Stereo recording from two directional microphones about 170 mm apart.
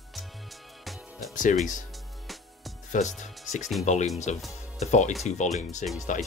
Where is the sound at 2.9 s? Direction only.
45° left (ahead or behind).